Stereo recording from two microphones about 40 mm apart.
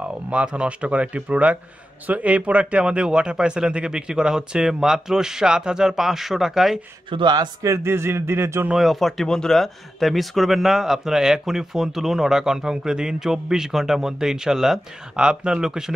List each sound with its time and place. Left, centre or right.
0.0 s speech: right; by 6.8 s centre
7.8 s speech: right
8.7 s speech: centre
9.3 s speech: centre
9.6 s speech: centre